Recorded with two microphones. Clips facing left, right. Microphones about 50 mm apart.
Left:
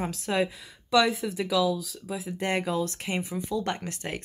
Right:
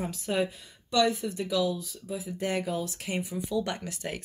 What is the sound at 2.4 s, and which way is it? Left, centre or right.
Speech, left.